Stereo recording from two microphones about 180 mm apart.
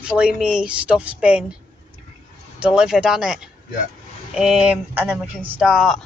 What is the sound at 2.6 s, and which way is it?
Speech, 5° right (ahead or behind).